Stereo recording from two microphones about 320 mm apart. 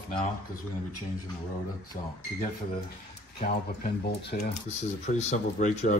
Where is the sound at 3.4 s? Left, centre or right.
Left.